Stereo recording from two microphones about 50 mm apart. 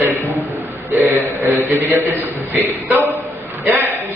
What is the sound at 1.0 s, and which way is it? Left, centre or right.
A man's voice, right.